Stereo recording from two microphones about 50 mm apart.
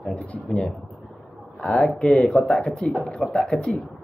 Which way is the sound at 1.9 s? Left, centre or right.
Left.